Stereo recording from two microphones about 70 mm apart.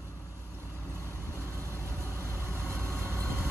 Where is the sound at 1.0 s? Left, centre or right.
Right.